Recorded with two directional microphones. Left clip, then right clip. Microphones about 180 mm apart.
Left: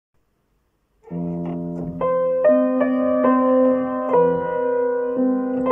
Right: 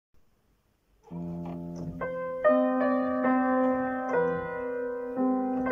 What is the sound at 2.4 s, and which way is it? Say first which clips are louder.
Music: left 4 dB; 20° left (ahead or behind).